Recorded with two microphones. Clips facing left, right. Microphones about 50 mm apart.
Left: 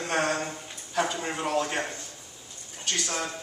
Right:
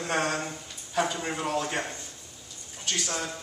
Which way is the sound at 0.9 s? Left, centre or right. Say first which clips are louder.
Even; centre.